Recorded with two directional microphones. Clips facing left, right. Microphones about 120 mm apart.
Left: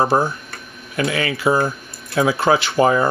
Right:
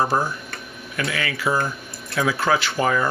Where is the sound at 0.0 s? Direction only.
25° left (ahead or behind).